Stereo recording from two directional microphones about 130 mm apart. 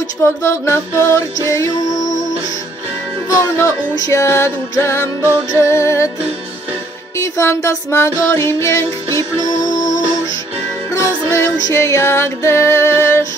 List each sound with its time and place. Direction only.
0.2 s music: 20° left (ahead or behind)
3.3 s music: 25° left (ahead or behind)
7.2 s music: 20° left (ahead or behind)
10.9 s music: 25° left (ahead or behind)